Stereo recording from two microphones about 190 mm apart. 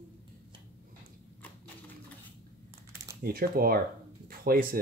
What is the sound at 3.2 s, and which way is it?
Speech, 50° right (ahead or behind).